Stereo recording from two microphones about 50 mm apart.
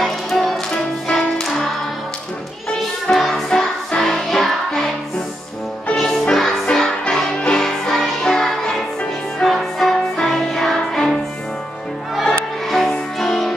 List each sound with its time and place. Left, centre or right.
0.0 s music: centre
0.7 s music: centre
3.2 s music: centre
5.9 s music: centre
12.2 s music: centre